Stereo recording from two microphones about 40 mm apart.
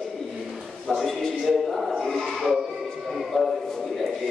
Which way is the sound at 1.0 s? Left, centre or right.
Centre.